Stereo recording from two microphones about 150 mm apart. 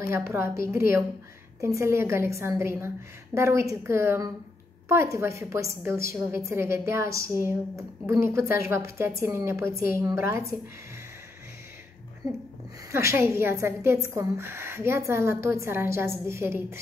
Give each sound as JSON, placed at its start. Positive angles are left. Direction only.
{"t": 0.0, "sound": "a woman's voice", "side_deg": -20}
{"t": 12.9, "sound": "a woman's voice", "side_deg": -15}